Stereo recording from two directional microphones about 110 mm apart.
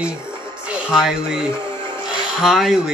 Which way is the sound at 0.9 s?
Centre (ahead or behind).